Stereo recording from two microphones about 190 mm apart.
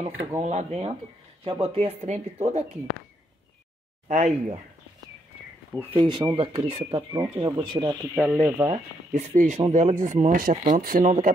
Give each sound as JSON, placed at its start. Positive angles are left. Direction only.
{"t": 0.4, "sound": "speech", "side_deg": -35}
{"t": 4.1, "sound": "speech", "side_deg": -35}
{"t": 5.9, "sound": "speech", "side_deg": -25}
{"t": 8.6, "sound": "speech", "side_deg": -35}